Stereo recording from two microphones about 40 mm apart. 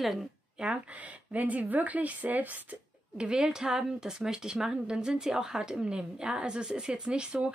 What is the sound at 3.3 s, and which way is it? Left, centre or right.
Speech, centre.